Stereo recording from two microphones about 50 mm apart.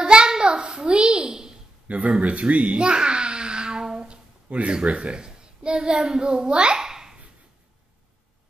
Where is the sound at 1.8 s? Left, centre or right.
Right.